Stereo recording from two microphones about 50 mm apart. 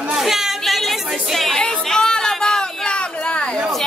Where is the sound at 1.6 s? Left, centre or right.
Centre.